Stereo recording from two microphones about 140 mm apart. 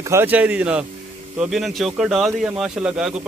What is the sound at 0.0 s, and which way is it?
A man's voice, 20° right (ahead or behind).